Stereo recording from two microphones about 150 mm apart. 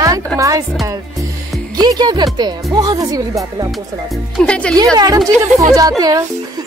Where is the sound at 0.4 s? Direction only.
20° right (ahead or behind).